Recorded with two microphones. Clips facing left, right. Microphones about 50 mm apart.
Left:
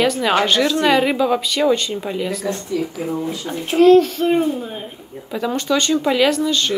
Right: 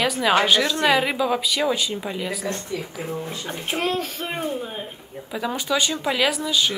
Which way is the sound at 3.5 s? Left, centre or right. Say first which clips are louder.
Left 14 dB; centre.